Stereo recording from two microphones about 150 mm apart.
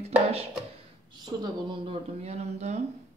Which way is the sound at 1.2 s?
30° right (ahead or behind).